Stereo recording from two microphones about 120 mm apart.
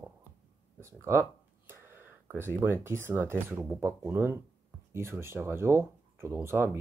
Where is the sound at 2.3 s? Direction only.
20° right (ahead or behind).